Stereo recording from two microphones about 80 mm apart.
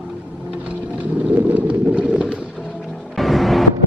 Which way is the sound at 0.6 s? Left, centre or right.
Centre.